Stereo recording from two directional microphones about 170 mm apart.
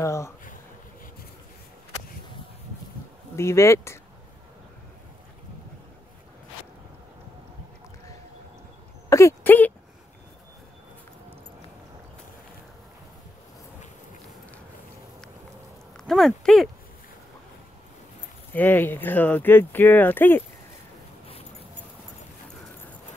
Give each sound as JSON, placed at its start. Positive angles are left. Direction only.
{"t": 0.0, "sound": "speech", "side_deg": 20}
{"t": 3.3, "sound": "speech", "side_deg": 15}
{"t": 9.1, "sound": "speech", "side_deg": 15}
{"t": 16.1, "sound": "speech", "side_deg": 0}
{"t": 18.5, "sound": "speech", "side_deg": 10}